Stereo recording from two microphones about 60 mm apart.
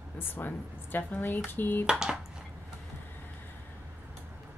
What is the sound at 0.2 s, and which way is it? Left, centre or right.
A woman's voice, left.